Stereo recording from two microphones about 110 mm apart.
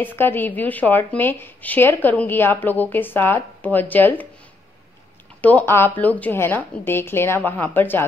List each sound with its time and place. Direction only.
0.0 s speech: 20° left (ahead or behind)
5.4 s a woman's voice: 15° left (ahead or behind)